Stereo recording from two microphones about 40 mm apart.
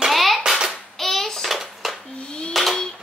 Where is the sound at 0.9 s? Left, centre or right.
Centre.